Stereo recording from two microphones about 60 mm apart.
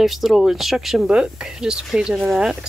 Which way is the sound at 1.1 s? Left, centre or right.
Centre.